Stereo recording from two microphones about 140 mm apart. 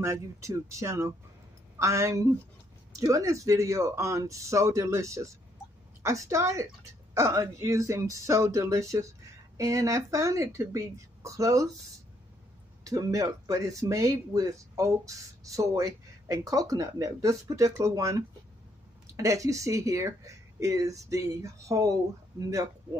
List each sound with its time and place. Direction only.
0.0 s speech: 20° right (ahead or behind)
12.8 s speech: 25° right (ahead or behind)